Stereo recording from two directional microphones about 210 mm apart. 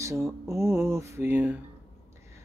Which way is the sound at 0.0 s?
15° right (ahead or behind).